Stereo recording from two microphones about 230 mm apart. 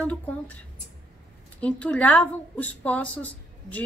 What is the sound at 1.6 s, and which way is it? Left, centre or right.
A woman's voice, centre.